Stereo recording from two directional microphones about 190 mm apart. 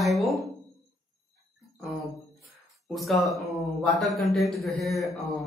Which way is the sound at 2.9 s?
Centre (ahead or behind).